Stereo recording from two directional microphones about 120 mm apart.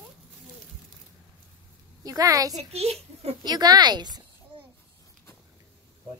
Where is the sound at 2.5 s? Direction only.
60° right (ahead or behind).